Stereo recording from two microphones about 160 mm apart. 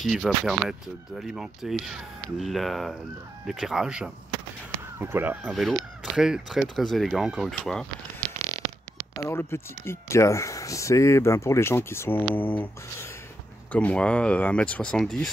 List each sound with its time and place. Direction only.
0.0 s speech: centre (ahead or behind)
5.1 s speech: 10° right (ahead or behind)
5.5 s speech: centre (ahead or behind)
9.1 s speech: 15° left (ahead or behind)